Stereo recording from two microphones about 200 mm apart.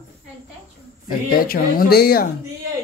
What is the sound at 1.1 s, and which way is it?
Speech, 45° left (ahead or behind).